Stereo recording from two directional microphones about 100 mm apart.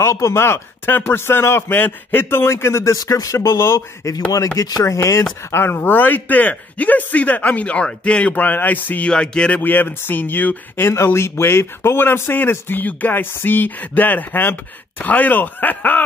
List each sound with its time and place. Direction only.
0.0 s a man's voice: 30° left (ahead or behind); by 9.6 s 10° left (ahead or behind)
9.6 s speech: 20° left (ahead or behind)